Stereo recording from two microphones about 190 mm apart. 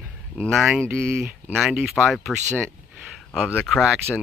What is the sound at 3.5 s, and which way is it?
Speech, centre (ahead or behind).